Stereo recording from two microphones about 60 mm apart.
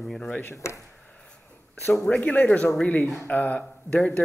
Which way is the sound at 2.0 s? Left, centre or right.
Left.